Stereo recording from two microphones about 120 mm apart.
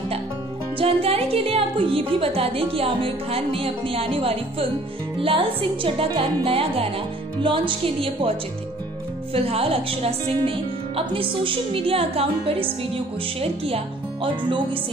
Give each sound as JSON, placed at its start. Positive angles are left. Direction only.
{"t": 0.7, "sound": "a woman's voice", "side_deg": -55}